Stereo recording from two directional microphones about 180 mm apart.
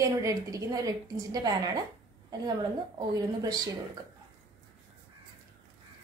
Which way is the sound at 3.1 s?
20° right (ahead or behind).